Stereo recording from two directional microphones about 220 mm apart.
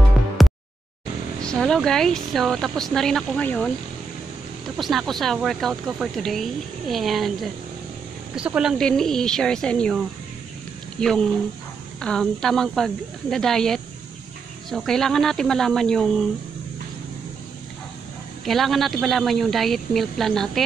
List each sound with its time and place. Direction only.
0.4 s a sound: centre (ahead or behind)
1.4 s speech: 5° left (ahead or behind)
4.7 s speech: centre (ahead or behind)
8.4 s speech: 5° right (ahead or behind)
18.4 s speech: centre (ahead or behind)